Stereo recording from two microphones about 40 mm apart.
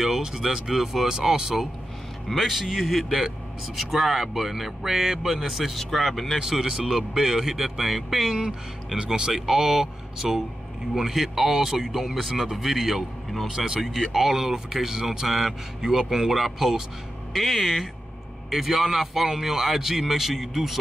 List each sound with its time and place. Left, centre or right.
0.0 s speech: centre
2.2 s speech: centre
6.4 s speech: centre
8.5 s speech: right
9.3 s speech: centre
17.3 s speech: centre
18.5 s speech: centre